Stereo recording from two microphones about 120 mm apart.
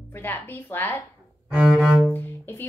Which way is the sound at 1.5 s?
5° right (ahead or behind).